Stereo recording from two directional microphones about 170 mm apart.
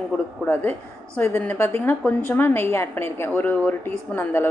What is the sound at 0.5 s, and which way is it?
A woman's voice, 10° left (ahead or behind).